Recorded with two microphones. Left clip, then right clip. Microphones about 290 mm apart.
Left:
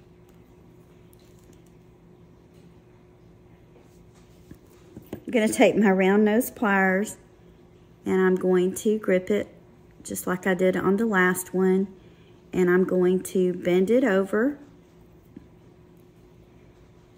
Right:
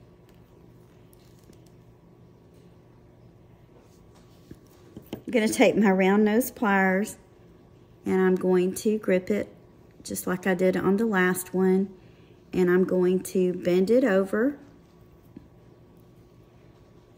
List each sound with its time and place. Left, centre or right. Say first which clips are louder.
5.2 s a woman's voice: left 1 dB; centre